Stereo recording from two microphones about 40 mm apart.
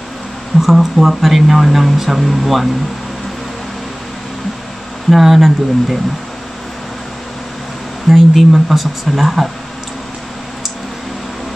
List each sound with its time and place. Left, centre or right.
0.6 s speech: centre
5.1 s speech: centre
8.1 s speech: centre